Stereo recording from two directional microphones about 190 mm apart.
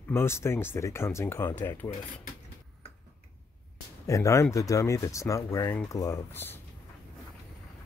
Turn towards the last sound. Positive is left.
turn(degrees=10)  # may be behind; listen again after turning